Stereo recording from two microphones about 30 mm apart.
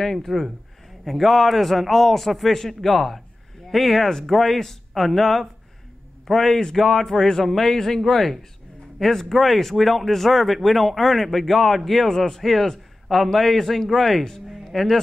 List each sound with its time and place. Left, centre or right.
0.0 s speech: centre